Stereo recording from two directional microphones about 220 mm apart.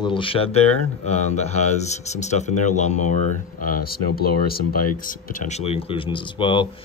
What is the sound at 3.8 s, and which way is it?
Speech, 45° left (ahead or behind).